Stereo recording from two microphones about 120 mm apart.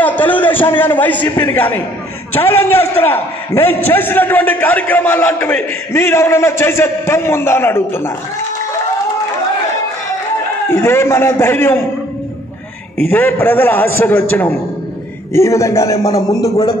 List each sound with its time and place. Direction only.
0.0 s a sound: 15° left (ahead or behind)
1.4 s a man's voice: 15° left (ahead or behind)
10.7 s a man's voice: 20° left (ahead or behind)
13.0 s a man's voice: 15° left (ahead or behind)